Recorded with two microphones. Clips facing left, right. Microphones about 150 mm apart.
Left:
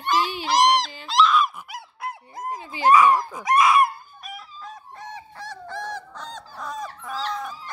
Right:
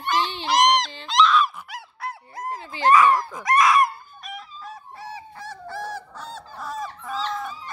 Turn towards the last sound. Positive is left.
turn(degrees=0)  # may be behind; listen again after turning